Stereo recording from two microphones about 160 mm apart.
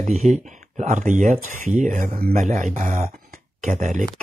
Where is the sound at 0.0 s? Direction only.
45° right (ahead or behind); by 2.3 s 60° right (ahead or behind).